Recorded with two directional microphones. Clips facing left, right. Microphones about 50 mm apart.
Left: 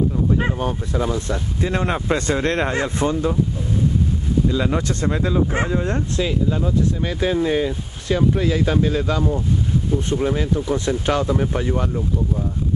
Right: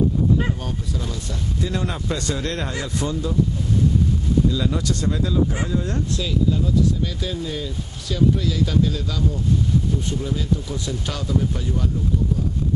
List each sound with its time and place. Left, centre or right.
0.4 s speech: left
4.5 s speech: left